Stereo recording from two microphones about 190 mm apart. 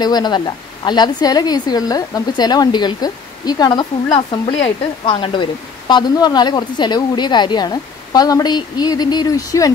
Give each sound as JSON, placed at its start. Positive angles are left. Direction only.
{"t": 0.0, "sound": "a woman's voice", "side_deg": 20}